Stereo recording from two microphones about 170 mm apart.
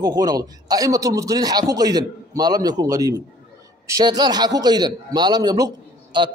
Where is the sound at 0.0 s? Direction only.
20° right (ahead or behind).